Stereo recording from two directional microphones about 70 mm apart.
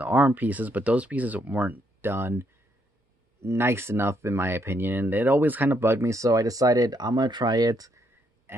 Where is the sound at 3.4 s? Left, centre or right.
Right.